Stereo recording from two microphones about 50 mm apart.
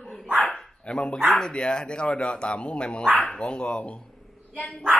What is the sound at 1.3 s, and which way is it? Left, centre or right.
Speech, centre.